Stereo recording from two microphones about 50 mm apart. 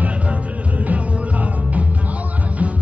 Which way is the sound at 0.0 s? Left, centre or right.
Right.